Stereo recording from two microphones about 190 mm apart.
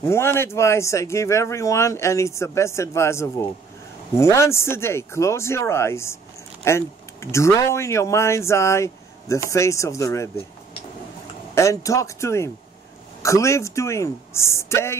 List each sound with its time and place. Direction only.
0.0 s speech: 15° left (ahead or behind)
11.5 s speech: 15° left (ahead or behind)